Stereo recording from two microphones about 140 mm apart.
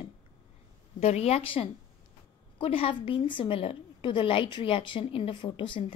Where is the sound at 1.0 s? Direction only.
50° left (ahead or behind).